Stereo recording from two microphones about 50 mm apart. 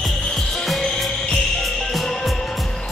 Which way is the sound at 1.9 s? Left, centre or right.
Centre.